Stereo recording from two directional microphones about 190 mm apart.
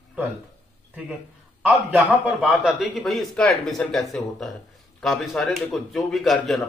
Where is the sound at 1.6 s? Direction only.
10° right (ahead or behind).